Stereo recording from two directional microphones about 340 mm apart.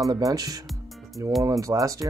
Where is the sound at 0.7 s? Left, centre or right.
Centre.